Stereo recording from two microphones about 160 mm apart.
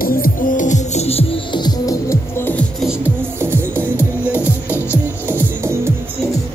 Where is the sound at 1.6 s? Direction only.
20° left (ahead or behind).